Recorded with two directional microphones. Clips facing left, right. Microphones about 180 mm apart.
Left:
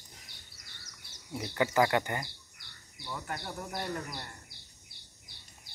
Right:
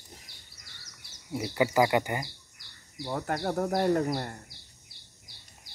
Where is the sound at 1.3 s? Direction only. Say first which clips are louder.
Right 4 dB; 10° right (ahead or behind).